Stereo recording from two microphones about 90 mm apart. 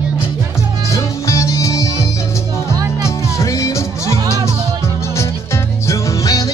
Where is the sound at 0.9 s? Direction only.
35° left (ahead or behind).